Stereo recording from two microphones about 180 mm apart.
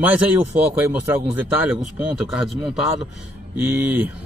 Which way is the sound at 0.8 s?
10° right (ahead or behind).